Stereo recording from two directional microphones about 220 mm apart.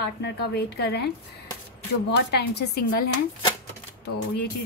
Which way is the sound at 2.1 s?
50° left (ahead or behind).